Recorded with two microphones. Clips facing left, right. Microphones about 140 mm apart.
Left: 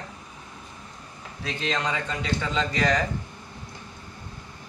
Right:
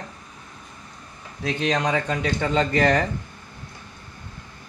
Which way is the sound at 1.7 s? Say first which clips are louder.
Right 4 dB; 55° right (ahead or behind).